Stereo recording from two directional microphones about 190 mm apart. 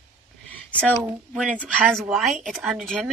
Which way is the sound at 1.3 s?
Centre (ahead or behind).